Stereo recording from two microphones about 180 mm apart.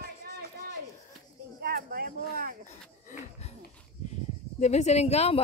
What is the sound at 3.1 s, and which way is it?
Wheeze, 35° left (ahead or behind).